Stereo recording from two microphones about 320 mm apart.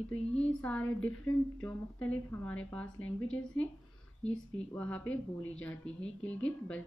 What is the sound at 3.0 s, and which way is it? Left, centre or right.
Speech, left.